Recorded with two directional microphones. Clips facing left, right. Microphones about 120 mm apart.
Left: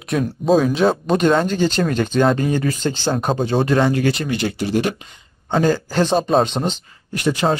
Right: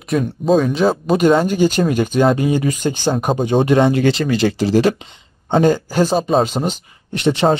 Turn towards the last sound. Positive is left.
turn(degrees=-25)  # may be behind; listen again after turning